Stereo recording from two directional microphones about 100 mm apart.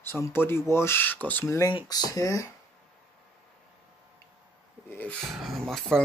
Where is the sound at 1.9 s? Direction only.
40° left (ahead or behind).